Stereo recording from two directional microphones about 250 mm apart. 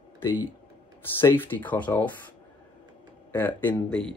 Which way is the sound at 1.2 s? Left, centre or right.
Centre.